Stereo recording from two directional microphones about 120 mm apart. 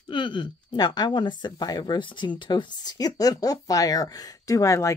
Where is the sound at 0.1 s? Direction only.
40° left (ahead or behind).